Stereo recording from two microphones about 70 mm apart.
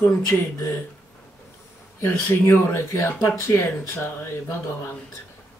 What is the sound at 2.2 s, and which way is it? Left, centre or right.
Speech, left.